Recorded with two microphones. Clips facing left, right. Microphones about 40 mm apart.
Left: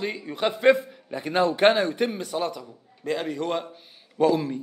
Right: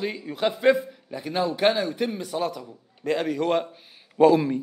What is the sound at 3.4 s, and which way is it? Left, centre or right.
A man's voice, centre.